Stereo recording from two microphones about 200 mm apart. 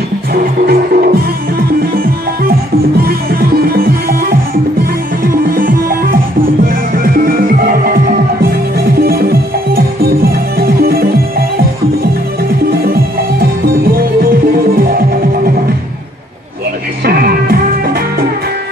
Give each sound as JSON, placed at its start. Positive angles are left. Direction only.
{"t": 0.3, "sound": "music", "side_deg": -50}
{"t": 3.0, "sound": "music", "side_deg": -50}
{"t": 7.0, "sound": "music", "side_deg": -45}
{"t": 12.8, "sound": "music", "side_deg": -50}
{"t": 14.8, "sound": "music", "side_deg": -45}
{"t": 17.0, "sound": "music", "side_deg": -50}